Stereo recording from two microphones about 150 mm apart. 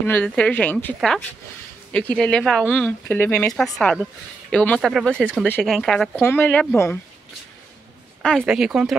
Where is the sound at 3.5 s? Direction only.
Centre (ahead or behind).